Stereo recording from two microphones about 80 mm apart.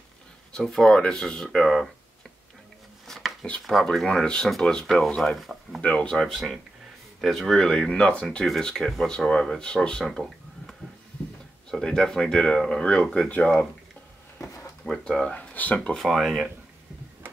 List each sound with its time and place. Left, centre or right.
0.6 s speech: centre
3.1 s a sound: centre
3.9 s speech: centre
5.8 s speech: centre
11.7 s speech: centre
14.4 s a sound: left
14.9 s speech: centre
15.3 s speech: left
15.9 s speech: centre